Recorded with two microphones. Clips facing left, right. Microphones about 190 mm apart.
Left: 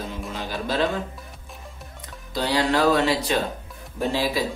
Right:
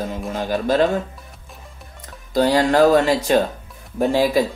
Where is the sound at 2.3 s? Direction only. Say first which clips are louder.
Right 7 dB; 45° right (ahead or behind).